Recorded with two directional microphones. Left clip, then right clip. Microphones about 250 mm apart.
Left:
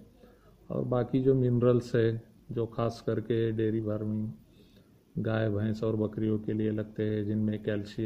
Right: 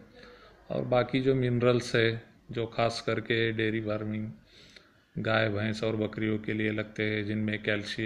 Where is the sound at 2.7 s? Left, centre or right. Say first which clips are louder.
Right 6 dB; centre.